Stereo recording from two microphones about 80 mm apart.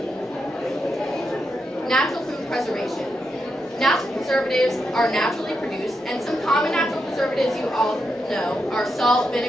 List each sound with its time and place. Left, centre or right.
3.8 s a woman's voice: centre
6.4 s a woman's voice: centre